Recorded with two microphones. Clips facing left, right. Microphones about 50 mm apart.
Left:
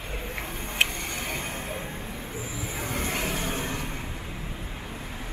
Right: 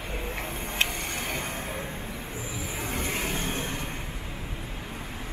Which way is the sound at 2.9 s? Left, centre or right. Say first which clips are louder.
Left 1 dB; centre.